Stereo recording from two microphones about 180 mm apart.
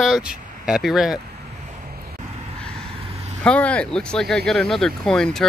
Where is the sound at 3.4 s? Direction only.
5° left (ahead or behind).